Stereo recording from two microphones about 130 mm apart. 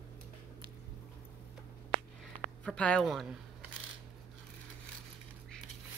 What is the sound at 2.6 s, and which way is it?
Speech, 10° left (ahead or behind).